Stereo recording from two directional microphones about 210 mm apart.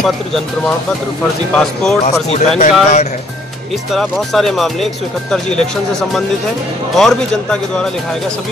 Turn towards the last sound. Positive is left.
turn(degrees=5)  # may be behind; listen again after turning